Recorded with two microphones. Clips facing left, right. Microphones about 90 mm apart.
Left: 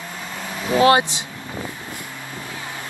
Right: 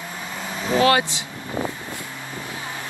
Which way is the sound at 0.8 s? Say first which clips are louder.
Left 4 dB; 25° left (ahead or behind).